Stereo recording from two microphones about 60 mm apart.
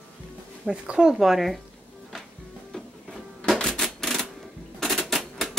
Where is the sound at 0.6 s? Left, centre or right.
Centre.